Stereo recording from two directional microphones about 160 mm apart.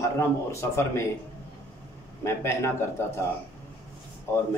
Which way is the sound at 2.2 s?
15° left (ahead or behind).